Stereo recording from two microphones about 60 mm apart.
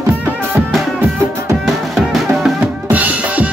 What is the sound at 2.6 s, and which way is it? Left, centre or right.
Drum, right.